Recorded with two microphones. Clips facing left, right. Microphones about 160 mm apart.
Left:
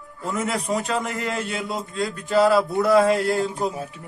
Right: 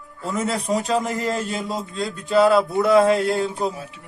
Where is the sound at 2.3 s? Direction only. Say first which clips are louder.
Right 2 dB; 20° right (ahead or behind).